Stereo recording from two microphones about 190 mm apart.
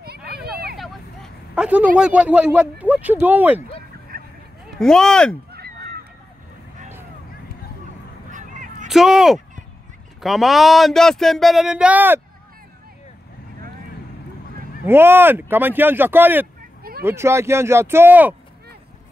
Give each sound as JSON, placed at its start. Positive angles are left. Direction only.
{"t": 0.5, "sound": "vehicle", "side_deg": -55}
{"t": 0.7, "sound": "vehicle", "side_deg": 0}
{"t": 2.0, "sound": "speech", "side_deg": -5}
{"t": 4.1, "sound": "a sound", "side_deg": -50}
{"t": 4.7, "sound": "speech", "side_deg": 5}
{"t": 5.5, "sound": "honk", "side_deg": -55}
{"t": 8.3, "sound": "a sound", "side_deg": -40}
{"t": 8.8, "sound": "speech", "side_deg": 0}
{"t": 14.9, "sound": "speech", "side_deg": -10}